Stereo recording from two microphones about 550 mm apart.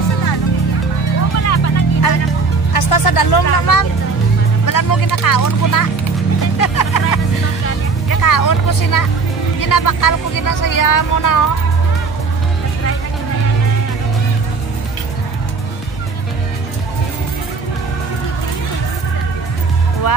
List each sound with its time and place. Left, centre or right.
1.4 s music: left
2.7 s vehicle: left
4.6 s speech: left